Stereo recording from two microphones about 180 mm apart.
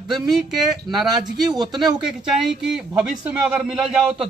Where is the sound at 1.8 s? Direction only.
Centre (ahead or behind).